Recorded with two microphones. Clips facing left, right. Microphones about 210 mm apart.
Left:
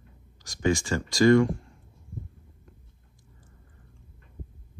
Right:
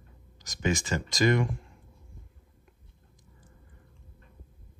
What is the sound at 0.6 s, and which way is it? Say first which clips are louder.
Speech: left 4 dB; 20° right (ahead or behind).